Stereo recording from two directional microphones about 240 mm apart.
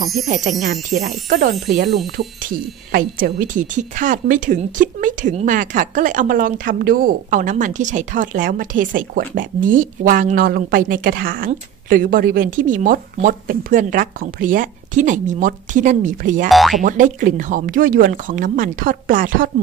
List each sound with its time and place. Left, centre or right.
0.3 s speech: right
16.4 s speech: centre
16.8 s speech: right